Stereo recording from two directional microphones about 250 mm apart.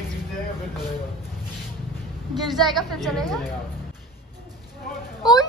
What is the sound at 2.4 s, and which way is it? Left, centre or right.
A woman's voice, centre.